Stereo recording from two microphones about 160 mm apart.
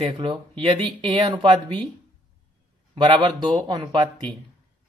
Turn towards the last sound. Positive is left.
turn(degrees=-25)  # may be behind; listen again after turning